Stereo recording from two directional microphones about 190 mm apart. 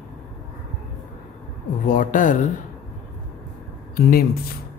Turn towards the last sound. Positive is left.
turn(degrees=50)  # may be behind; listen again after turning